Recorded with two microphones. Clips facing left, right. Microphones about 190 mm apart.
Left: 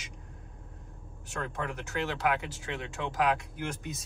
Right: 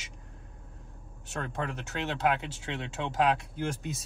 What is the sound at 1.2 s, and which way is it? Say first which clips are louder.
Speech: right 1 dB; 20° right (ahead or behind).